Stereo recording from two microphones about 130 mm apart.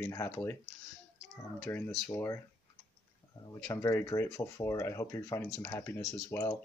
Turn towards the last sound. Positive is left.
turn(degrees=20)  # may be behind; listen again after turning